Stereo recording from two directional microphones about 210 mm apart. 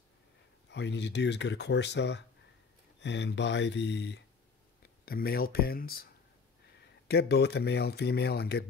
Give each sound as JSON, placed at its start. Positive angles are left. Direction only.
{"t": 0.7, "sound": "speech", "side_deg": 55}
{"t": 7.1, "sound": "speech", "side_deg": 50}